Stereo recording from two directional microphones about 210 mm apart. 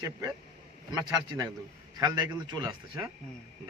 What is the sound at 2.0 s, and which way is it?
A man's voice, 15° right (ahead or behind).